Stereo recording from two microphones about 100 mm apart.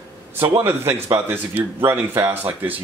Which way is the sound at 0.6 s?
25° right (ahead or behind).